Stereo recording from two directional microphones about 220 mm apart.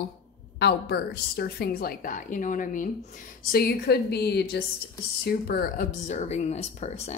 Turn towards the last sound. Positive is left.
turn(degrees=30)  # may be behind; listen again after turning